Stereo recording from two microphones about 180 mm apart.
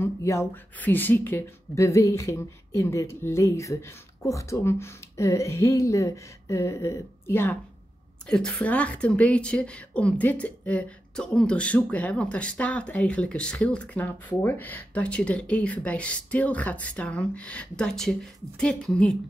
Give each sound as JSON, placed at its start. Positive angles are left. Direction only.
{"t": 0.0, "sound": "a woman's voice", "side_deg": 15}